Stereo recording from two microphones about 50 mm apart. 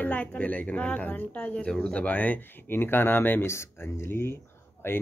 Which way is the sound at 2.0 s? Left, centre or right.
Left.